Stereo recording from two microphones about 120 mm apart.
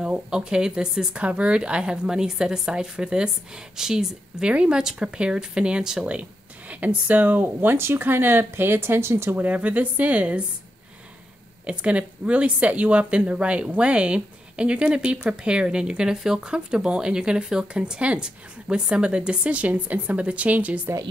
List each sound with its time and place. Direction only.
0.0 s speech: 5° right (ahead or behind)
11.6 s speech: 10° right (ahead or behind)